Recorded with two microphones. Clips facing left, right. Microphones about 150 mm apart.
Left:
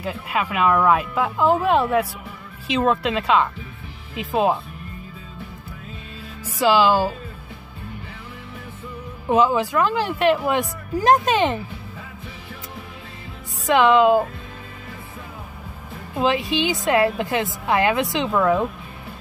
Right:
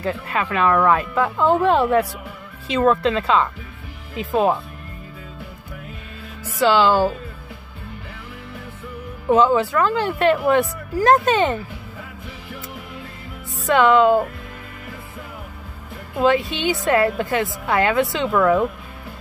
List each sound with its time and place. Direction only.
0.0 s speech: 10° left (ahead or behind)
6.4 s speech: 10° left (ahead or behind)
9.3 s speech: 15° left (ahead or behind)
13.7 s speech: 15° left (ahead or behind)
16.2 s speech: 15° left (ahead or behind)